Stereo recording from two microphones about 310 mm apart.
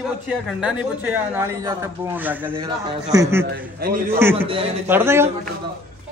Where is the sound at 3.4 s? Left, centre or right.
Right.